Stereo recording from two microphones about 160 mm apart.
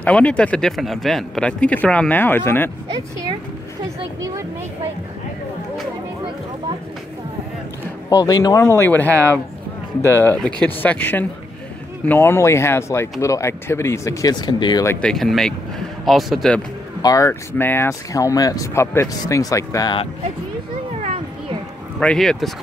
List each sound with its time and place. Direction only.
0.0 s speech: 10° left (ahead or behind)
8.1 s speech: 25° left (ahead or behind)
14.9 s speech: 5° left (ahead or behind)
17.0 s speech: 20° left (ahead or behind)
22.0 s speech: 5° left (ahead or behind)